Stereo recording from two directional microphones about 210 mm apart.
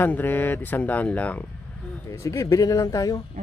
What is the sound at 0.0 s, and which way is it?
Speech, 10° left (ahead or behind).